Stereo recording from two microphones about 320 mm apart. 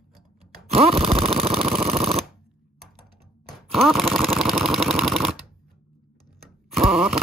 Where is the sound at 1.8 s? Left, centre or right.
Centre.